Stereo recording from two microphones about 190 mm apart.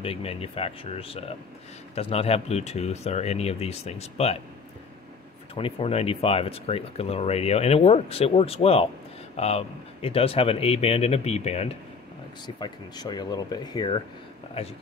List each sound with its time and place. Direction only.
0.0 s speech: 30° left (ahead or behind)
5.5 s speech: 30° left (ahead or behind)